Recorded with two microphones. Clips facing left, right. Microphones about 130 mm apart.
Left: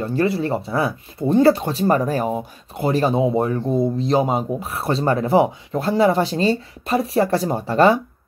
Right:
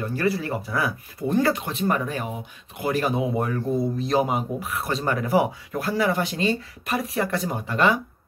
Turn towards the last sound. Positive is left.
turn(degrees=35)  # may be behind; listen again after turning